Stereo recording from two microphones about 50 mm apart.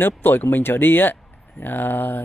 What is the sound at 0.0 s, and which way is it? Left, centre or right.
Speech, left.